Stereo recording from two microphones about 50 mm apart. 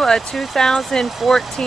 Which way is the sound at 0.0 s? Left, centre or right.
Centre.